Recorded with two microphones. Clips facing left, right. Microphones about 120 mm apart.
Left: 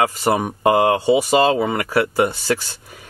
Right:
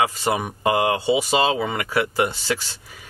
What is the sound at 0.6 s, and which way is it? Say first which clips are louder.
Speech: left 5 dB; 50° left (ahead or behind).